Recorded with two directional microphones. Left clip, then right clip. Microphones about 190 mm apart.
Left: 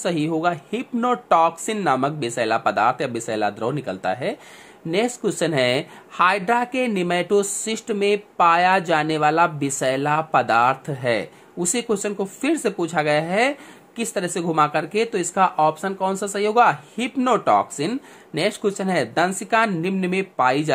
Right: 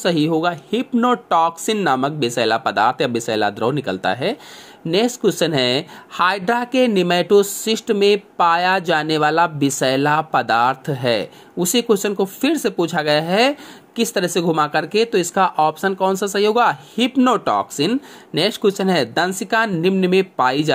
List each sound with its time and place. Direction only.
0.0 s speech: 20° right (ahead or behind)